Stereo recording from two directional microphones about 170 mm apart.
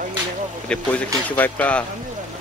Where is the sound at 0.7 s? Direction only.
10° left (ahead or behind).